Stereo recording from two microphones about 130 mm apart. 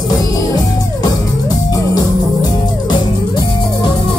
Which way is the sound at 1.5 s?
30° left (ahead or behind).